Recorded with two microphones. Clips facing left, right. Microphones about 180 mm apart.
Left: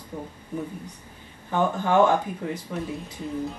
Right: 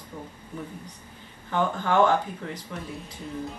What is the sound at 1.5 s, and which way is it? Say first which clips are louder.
Speech: left 2 dB; 10° left (ahead or behind).